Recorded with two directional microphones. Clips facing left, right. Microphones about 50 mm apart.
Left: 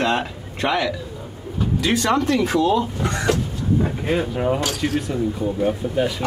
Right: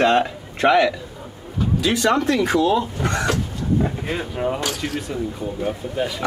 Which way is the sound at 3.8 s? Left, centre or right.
Centre.